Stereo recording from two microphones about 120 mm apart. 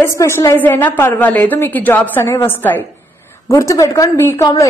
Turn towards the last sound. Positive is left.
turn(degrees=25)  # may be behind; listen again after turning